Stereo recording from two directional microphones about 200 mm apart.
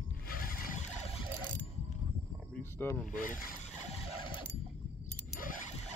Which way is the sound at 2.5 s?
10° left (ahead or behind).